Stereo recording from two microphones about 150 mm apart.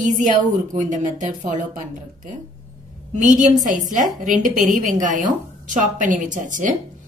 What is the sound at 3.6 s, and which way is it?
A woman's voice, 60° right (ahead or behind).